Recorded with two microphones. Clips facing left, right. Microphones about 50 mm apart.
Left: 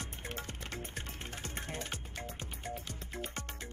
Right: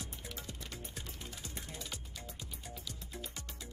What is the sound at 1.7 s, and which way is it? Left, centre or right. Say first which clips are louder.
Music: left 6 dB; left.